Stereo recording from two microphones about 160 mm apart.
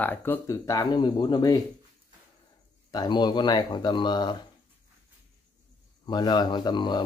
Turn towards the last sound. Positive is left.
turn(degrees=30)  # may be behind; listen again after turning